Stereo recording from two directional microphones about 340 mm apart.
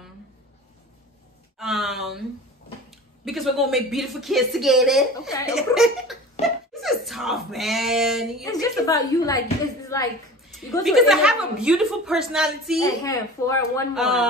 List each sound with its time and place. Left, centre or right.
1.6 s a sound: centre
2.9 s speech: centre
6.4 s giggle: centre
6.7 s speech: centre
12.8 s speech: centre